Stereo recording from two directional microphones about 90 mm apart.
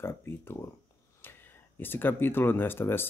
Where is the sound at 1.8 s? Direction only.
25° left (ahead or behind).